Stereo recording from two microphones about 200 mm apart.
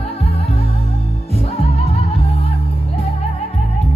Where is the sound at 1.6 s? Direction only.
30° left (ahead or behind).